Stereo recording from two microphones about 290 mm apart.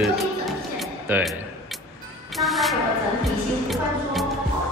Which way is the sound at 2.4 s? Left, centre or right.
Centre.